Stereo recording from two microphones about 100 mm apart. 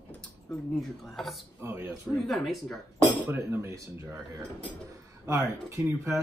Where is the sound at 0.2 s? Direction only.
5° left (ahead or behind).